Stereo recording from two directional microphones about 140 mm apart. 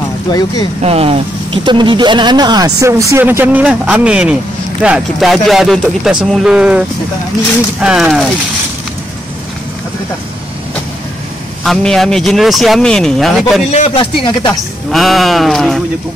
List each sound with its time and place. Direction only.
0.3 s speech: 30° left (ahead or behind)
0.8 s a man's voice: 45° right (ahead or behind); by 6.8 s 5° right (ahead or behind)
7.8 s a man's voice: 5° right (ahead or behind)
11.6 s a man's voice: centre (ahead or behind)
13.7 s speech: 50° left (ahead or behind)
14.9 s a man's voice: centre (ahead or behind)